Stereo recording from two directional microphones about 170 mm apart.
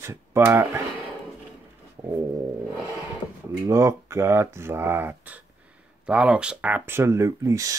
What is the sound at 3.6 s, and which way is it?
Speech, 15° right (ahead or behind).